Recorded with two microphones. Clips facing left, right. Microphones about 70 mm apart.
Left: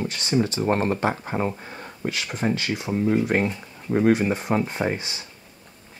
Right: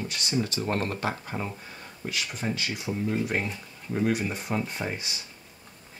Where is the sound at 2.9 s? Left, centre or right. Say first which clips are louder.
Left 7 dB; left.